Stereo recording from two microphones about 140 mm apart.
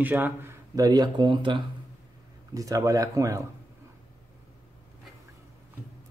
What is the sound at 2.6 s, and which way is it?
Speech, 25° right (ahead or behind).